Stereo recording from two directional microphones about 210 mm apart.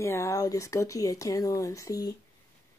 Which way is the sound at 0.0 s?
15° left (ahead or behind).